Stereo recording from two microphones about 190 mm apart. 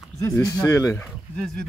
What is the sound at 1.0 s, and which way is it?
Speech, 5° left (ahead or behind).